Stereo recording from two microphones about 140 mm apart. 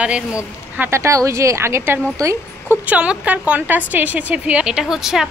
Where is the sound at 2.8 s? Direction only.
10° right (ahead or behind).